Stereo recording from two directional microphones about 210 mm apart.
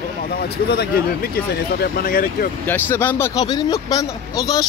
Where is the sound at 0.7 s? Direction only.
50° left (ahead or behind).